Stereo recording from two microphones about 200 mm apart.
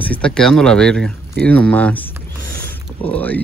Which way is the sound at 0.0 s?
5° left (ahead or behind).